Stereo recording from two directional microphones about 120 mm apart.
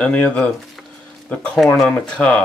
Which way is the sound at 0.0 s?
10° left (ahead or behind).